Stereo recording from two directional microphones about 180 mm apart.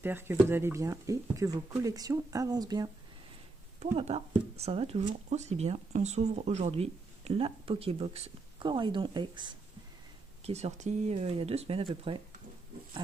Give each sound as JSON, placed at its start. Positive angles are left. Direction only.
{"t": 0.0, "sound": "speech", "side_deg": -10}
{"t": 3.8, "sound": "speech", "side_deg": -35}
{"t": 10.4, "sound": "speech", "side_deg": -35}